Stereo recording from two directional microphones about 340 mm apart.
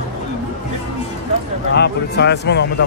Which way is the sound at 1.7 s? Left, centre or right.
Left.